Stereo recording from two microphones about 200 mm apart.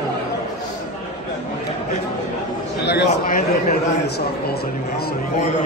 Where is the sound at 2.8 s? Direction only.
55° left (ahead or behind).